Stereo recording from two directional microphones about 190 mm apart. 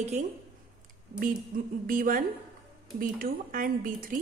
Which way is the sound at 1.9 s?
45° right (ahead or behind).